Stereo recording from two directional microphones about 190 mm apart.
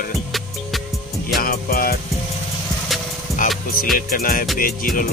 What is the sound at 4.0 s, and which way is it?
Music, 50° left (ahead or behind).